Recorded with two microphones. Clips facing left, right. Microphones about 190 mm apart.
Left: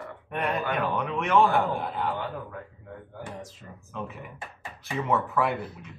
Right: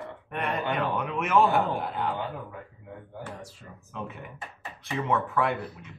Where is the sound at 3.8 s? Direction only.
Centre (ahead or behind).